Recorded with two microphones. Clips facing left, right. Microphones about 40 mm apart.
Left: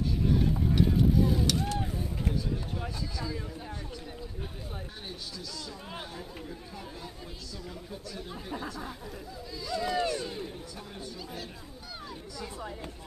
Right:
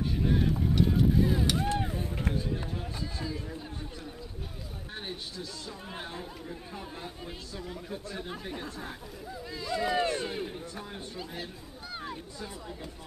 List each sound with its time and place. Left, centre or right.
0.3 s vehicle: centre
0.6 s vehicle: centre
1.2 s vehicle: right
7.9 s speech: right
9.6 s speech: right